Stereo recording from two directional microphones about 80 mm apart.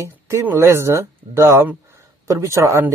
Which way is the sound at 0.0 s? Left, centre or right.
Right.